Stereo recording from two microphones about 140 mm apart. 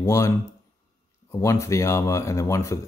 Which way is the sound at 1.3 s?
20° left (ahead or behind).